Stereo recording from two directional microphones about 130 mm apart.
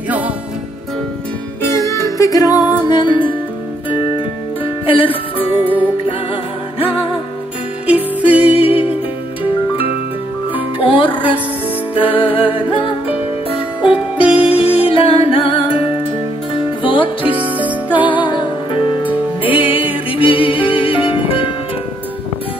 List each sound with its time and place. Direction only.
1.6 s music: 20° left (ahead or behind); by 5.1 s 45° left (ahead or behind)
5.5 s music: 10° right (ahead or behind)
6.8 s music: 45° left (ahead or behind)
8.2 s music: 10° right (ahead or behind)
8.5 s music: 50° left (ahead or behind)
10.8 s music: 45° left (ahead or behind)
13.7 s music: 10° right (ahead or behind)
14.4 s music: 45° left (ahead or behind)
17.3 s music: 10° right (ahead or behind)
18.0 s music: 40° left (ahead or behind)
19.0 s music: 15° right (ahead or behind)
20.1 s music: 40° left (ahead or behind)